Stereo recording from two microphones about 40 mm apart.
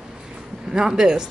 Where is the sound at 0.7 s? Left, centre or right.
Centre.